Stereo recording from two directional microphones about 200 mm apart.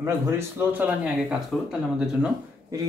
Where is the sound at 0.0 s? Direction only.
10° right (ahead or behind).